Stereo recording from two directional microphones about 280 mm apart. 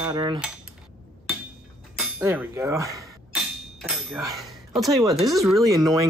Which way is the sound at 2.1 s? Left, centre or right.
Centre.